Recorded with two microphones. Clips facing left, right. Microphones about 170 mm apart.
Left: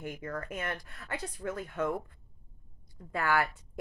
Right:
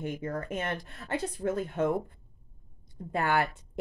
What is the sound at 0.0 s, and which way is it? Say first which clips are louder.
A woman's voice: right 4 dB; 25° right (ahead or behind).